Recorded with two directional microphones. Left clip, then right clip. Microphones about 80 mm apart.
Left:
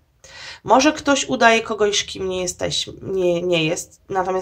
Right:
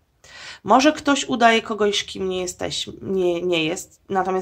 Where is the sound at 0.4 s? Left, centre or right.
Right.